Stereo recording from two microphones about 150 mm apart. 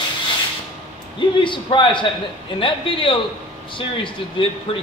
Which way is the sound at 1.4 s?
35° left (ahead or behind).